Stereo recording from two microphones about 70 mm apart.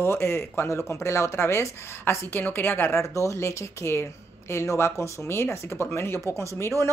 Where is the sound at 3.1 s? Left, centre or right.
Left.